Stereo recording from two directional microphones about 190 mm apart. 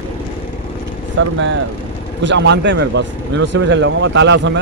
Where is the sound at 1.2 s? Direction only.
90° right.